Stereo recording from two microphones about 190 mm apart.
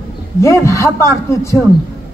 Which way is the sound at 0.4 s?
15° left (ahead or behind).